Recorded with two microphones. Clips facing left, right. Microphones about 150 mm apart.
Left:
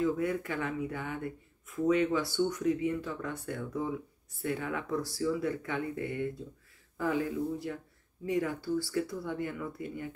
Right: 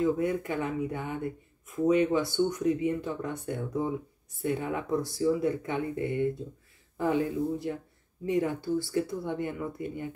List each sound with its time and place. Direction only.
0.0 s speech: 20° right (ahead or behind)